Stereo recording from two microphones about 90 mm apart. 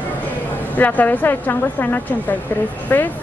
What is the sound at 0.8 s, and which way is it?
A woman's voice, 20° left (ahead or behind).